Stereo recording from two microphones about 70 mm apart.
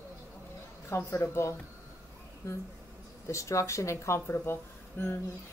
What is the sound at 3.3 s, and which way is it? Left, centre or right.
Speech, left.